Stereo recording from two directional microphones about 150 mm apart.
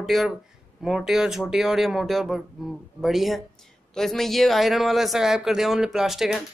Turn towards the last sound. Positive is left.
turn(degrees=0)  # may be behind; listen again after turning